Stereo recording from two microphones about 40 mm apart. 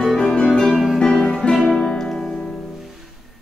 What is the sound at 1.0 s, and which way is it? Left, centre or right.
Music, centre.